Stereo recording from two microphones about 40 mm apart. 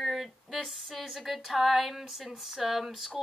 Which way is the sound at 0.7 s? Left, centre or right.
Centre.